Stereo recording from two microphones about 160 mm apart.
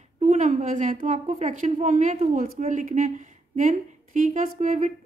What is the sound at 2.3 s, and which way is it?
Speech, 65° right (ahead or behind).